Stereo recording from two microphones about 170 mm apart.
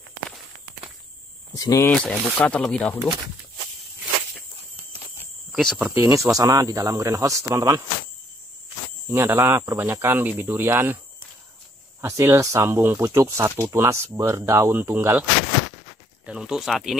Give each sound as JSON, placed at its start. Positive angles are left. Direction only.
{"t": 1.5, "sound": "speech", "side_deg": 20}
{"t": 1.9, "sound": "speech", "side_deg": 5}
{"t": 5.5, "sound": "speech", "side_deg": 0}
{"t": 5.9, "sound": "speech", "side_deg": -15}
{"t": 9.1, "sound": "speech", "side_deg": -15}
{"t": 12.0, "sound": "speech", "side_deg": -15}
{"t": 16.3, "sound": "speech", "side_deg": -5}